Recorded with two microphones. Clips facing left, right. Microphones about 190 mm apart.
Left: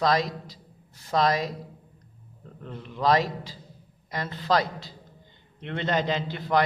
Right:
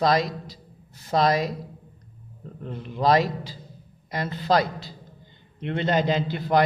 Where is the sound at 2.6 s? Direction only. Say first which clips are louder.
Right 2 dB; 10° right (ahead or behind).